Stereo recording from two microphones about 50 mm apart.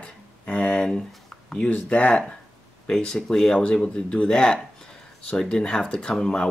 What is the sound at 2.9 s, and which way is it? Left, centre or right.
Speech, centre.